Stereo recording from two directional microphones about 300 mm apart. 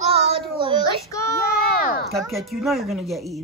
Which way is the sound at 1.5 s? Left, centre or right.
Left.